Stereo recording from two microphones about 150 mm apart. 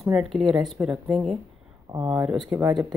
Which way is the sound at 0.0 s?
Centre (ahead or behind).